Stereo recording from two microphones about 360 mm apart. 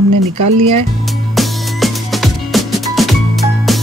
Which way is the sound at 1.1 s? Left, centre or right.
Centre.